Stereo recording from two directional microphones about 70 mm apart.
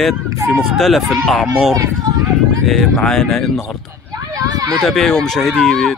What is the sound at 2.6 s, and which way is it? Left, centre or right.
Speech, centre.